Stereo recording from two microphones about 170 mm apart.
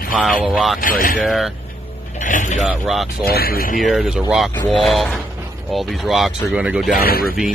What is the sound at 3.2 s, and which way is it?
Speech, 65° left (ahead or behind).